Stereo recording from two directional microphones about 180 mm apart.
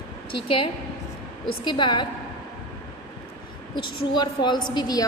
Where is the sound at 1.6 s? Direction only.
25° left (ahead or behind).